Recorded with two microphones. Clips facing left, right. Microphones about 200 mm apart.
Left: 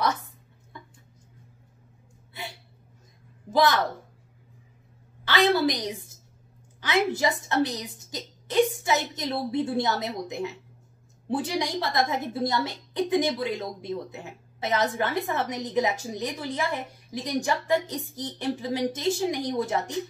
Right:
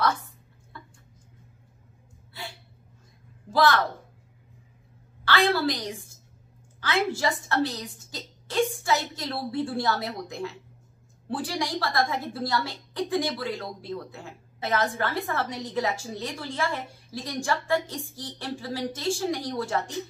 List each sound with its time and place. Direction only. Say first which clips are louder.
0.7 s a sound: even; 20° left (ahead or behind)
2.3 s hiccup: left 1 dB; 20° left (ahead or behind)
3.4 s a woman's voice: even; 20° left (ahead or behind)
5.2 s a woman's voice: left 2 dB; 20° left (ahead or behind)